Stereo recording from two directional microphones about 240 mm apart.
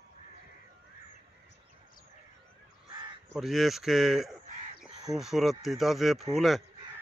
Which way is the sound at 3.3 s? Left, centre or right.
Centre.